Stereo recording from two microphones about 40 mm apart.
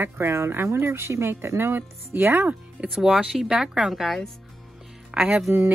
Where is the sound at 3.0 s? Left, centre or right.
Centre.